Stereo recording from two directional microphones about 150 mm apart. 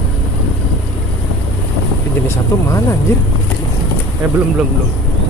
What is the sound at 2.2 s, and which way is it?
Vehicle, 20° left (ahead or behind).